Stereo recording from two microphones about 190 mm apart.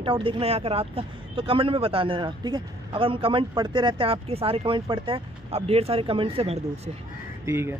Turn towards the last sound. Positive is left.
turn(degrees=-15)  # may be behind; listen again after turning